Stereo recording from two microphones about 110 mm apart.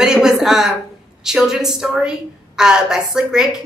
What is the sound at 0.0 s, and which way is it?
A woman's voice, 5° right (ahead or behind).